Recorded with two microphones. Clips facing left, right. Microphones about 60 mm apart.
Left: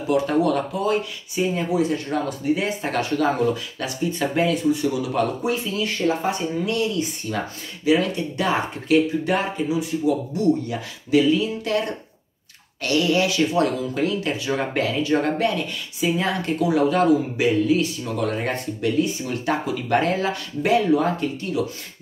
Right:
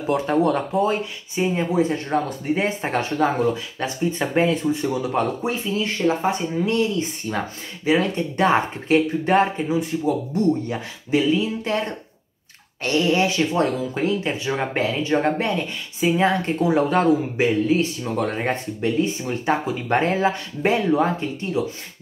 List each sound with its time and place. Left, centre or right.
0.1 s speech: right
12.8 s speech: right